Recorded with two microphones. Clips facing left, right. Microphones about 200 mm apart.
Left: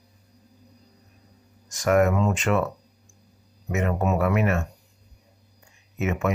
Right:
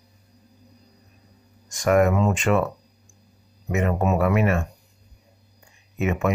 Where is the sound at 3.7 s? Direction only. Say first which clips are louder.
Right 2 dB; 25° right (ahead or behind).